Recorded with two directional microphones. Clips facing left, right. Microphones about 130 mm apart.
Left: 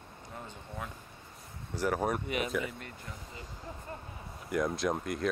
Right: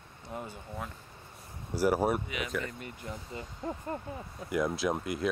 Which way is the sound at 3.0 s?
30° right (ahead or behind).